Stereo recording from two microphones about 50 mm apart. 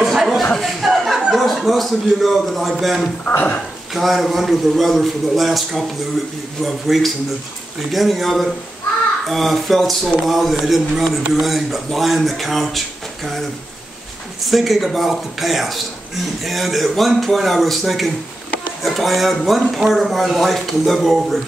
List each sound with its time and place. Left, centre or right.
0.0 s a sound: centre
0.8 s chuckle: centre
1.3 s speech: centre
3.3 s speech: left
3.9 s speech: centre
14.5 s speech: centre